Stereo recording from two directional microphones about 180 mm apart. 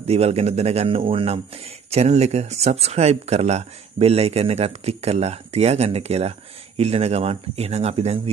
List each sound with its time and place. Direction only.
0.0 s speech: 35° right (ahead or behind)